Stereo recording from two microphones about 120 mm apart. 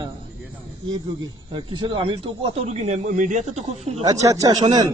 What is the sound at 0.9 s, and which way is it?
Speech, 40° right (ahead or behind).